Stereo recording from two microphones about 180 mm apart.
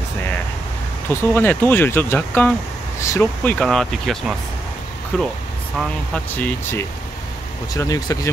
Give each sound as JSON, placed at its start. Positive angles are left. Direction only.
{"t": 1.0, "sound": "speech", "side_deg": 10}